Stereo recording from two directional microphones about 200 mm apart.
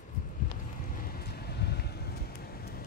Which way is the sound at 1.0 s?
50° left (ahead or behind).